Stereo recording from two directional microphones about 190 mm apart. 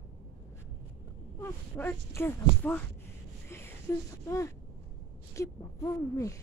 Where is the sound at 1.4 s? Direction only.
10° left (ahead or behind).